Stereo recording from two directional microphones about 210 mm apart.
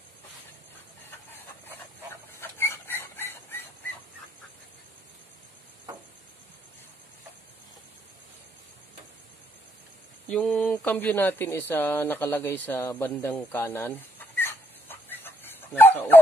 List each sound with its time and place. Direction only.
2.4 s a sound: 10° left (ahead or behind)
10.2 s speech: 5° left (ahead or behind)
12.6 s chicken: 10° left (ahead or behind)